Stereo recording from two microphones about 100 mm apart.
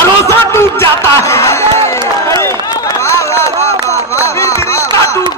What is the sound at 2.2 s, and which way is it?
Run, 30° left (ahead or behind).